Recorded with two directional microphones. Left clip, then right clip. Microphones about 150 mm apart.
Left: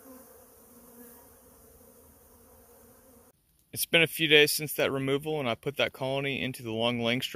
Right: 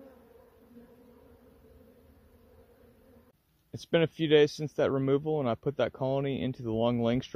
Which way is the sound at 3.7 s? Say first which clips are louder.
Left 3 dB; 20° right (ahead or behind).